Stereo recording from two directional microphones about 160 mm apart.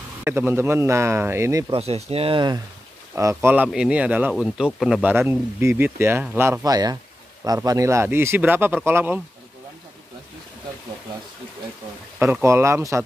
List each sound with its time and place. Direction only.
0.2 s speech: 15° right (ahead or behind)
1.7 s speech: 40° right (ahead or behind)
3.2 s speech: 15° right (ahead or behind)
5.1 s speech: 15° right (ahead or behind)
12.2 s speech: 15° right (ahead or behind)